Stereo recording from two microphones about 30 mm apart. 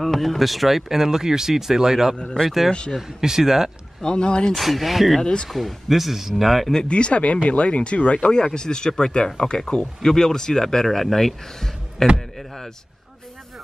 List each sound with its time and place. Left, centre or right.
0.0 s speech: centre
4.0 s speech: left
4.5 s speech: centre
5.2 s speech: left
5.5 s speech: centre
6.9 s speech: left
8.5 s speech: left
10.0 s speech: centre
12.4 s a sound: centre